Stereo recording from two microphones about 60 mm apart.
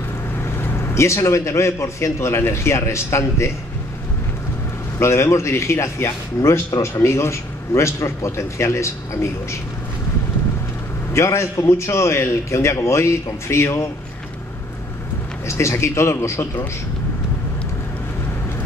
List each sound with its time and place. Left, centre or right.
0.4 s a man's voice: left
4.9 s a man's voice: left
11.1 s a man's voice: left
15.4 s a man's voice: left